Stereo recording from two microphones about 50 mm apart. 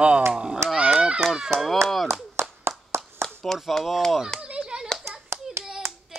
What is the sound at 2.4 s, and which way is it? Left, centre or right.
Clapping, right.